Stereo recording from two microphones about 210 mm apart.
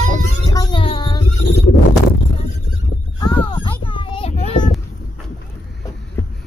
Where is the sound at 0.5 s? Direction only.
20° left (ahead or behind).